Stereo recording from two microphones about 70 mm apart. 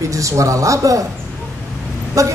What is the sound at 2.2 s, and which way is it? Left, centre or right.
Speech, right.